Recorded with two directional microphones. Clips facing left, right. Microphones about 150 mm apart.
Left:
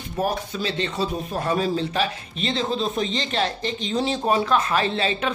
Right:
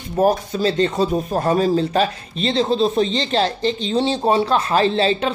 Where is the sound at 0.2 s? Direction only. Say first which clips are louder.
Right 8 dB; 45° right (ahead or behind).